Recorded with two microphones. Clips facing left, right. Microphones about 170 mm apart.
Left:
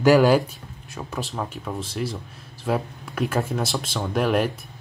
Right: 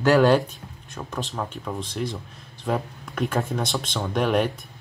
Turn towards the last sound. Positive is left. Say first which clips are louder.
# even
turn(degrees=0)  # may be behind; listen again after turning